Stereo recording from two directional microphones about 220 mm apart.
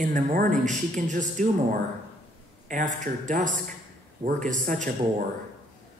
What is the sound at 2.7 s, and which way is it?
Speech, 35° right (ahead or behind).